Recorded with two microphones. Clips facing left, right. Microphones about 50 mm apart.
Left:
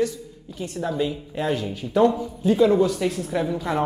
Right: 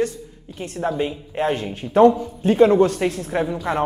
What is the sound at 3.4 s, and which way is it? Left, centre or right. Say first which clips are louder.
Speech: right 2 dB; centre.